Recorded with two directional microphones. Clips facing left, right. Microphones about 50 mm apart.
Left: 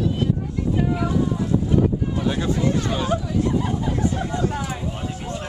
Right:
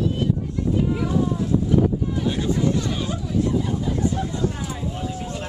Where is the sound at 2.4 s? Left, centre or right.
Left.